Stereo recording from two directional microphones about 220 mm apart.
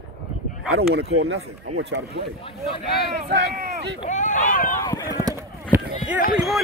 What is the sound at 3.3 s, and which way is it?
Speech, 50° right (ahead or behind).